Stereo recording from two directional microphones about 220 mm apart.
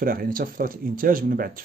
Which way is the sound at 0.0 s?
40° right (ahead or behind).